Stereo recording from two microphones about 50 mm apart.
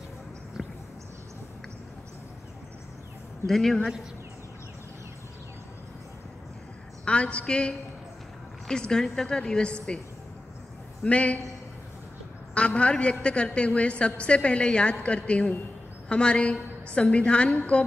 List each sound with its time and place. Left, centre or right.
3.4 s a woman's voice: centre
7.1 s a woman's voice: left
11.1 s a woman's voice: left
12.5 s a woman's voice: left